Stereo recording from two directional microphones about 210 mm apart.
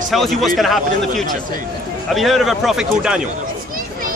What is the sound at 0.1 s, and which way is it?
Speech, centre (ahead or behind).